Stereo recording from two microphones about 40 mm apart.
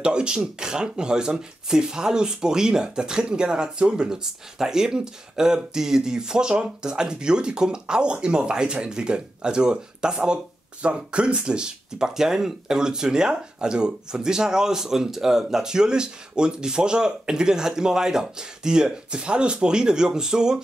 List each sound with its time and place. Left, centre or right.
0.0 s speech: right